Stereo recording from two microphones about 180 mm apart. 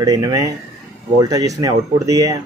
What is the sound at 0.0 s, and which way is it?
Speech, 20° right (ahead or behind).